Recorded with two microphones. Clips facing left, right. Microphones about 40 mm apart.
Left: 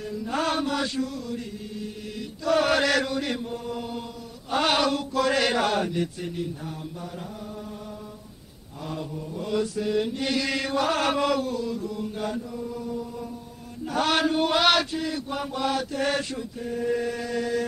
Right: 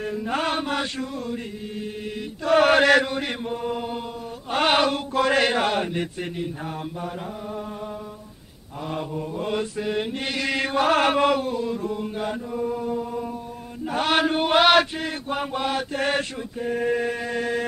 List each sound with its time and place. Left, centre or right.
0.0 s chant: right
2.4 s mantra: right
8.9 s mantra: right
13.8 s chant: right
14.5 s mantra: right